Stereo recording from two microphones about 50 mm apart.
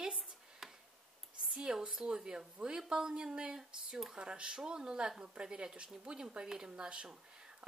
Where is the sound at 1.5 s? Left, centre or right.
Centre.